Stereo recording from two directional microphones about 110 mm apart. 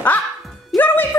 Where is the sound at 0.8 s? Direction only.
20° left (ahead or behind).